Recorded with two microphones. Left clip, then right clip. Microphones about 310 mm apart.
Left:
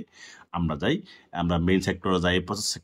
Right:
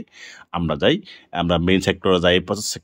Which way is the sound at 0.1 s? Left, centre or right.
Centre.